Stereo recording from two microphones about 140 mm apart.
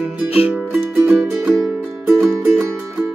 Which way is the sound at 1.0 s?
10° right (ahead or behind).